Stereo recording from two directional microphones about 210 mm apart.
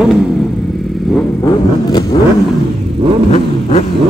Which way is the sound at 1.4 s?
15° left (ahead or behind).